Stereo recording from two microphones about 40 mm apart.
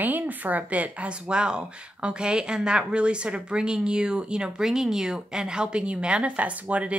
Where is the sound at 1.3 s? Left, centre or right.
Right.